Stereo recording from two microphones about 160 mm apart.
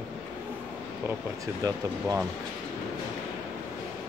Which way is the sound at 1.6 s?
20° right (ahead or behind).